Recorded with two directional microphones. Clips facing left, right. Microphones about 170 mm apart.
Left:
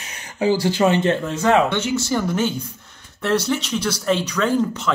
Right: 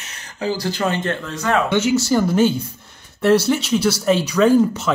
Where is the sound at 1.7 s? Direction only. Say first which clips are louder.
Right 5 dB; 5° right (ahead or behind).